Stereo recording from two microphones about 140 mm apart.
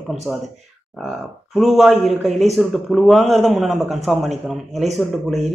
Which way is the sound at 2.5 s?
Centre (ahead or behind).